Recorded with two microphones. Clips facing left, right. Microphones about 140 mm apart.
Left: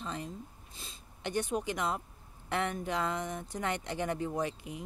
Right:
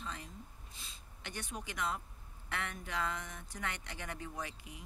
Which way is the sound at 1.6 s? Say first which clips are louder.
Left 6 dB; 25° left (ahead or behind).